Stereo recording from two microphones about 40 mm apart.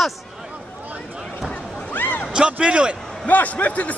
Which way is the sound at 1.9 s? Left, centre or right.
Left.